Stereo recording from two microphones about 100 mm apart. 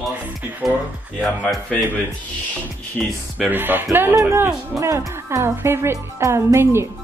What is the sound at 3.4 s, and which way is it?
Speech, 20° right (ahead or behind).